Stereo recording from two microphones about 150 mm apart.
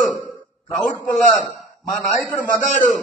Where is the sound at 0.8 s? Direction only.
Centre (ahead or behind).